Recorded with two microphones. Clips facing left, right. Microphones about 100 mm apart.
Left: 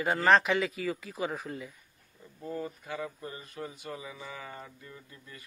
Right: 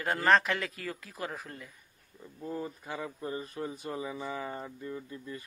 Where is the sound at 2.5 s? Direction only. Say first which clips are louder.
Left 1 dB; 25° right (ahead or behind).